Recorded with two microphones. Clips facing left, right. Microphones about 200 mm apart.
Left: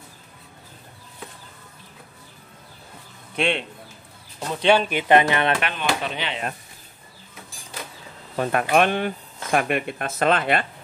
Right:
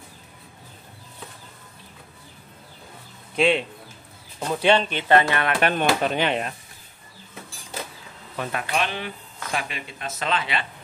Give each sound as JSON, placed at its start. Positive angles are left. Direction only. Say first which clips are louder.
{"t": 3.3, "sound": "speech", "louder": "right 3 dB", "side_deg": -5}
{"t": 4.6, "sound": "speech", "louder": "left 2 dB", "side_deg": 10}
{"t": 5.6, "sound": "speech", "louder": "right 5 dB", "side_deg": -40}
{"t": 8.4, "sound": "speech", "louder": "left 7 dB", "side_deg": 55}